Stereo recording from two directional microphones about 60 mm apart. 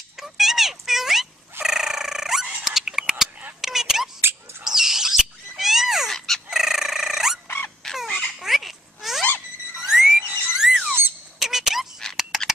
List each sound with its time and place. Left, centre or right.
0.2 s cat: centre
1.6 s fowl: centre
2.6 s squeak: centre
3.6 s whispering: centre
4.2 s a sound: right
4.6 s bird: centre
6.5 s fowl: centre
7.4 s crow: left
7.8 s fowl: centre
8.4 s babbling: centre
9.8 s a sound: centre